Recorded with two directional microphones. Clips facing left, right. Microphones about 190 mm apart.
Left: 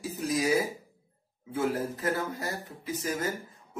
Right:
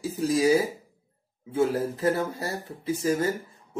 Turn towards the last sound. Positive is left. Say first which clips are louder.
# right 7 dB
turn(degrees=-30)  # may be behind; listen again after turning